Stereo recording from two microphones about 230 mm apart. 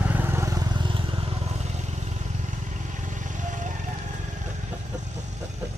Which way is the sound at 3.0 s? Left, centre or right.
Right.